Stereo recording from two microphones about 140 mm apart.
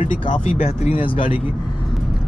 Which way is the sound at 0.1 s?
65° left (ahead or behind).